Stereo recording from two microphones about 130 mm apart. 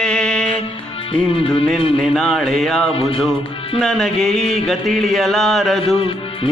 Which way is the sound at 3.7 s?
5° left (ahead or behind).